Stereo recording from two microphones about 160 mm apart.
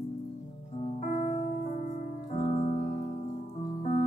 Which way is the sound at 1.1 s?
50° left (ahead or behind).